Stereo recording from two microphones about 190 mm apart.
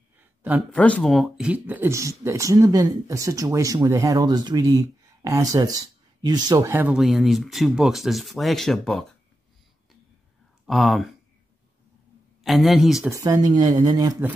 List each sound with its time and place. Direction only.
0.7 s speech: 5° left (ahead or behind)
10.7 s a man's voice: centre (ahead or behind)
12.4 s a man's voice: centre (ahead or behind)
13.1 s speech: 20° right (ahead or behind)